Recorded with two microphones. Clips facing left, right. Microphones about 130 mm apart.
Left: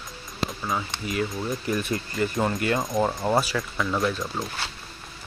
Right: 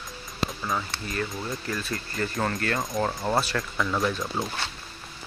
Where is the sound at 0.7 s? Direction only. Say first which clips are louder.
Left 4 dB; 10° left (ahead or behind).